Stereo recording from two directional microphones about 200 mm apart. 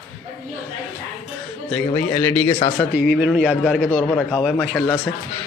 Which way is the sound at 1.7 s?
10° left (ahead or behind).